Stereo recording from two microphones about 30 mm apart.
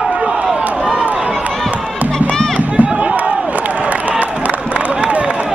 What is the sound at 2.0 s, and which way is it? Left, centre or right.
Music, right.